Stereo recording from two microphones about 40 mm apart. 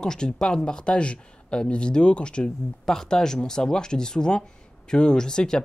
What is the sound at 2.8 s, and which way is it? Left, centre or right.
Speech, centre.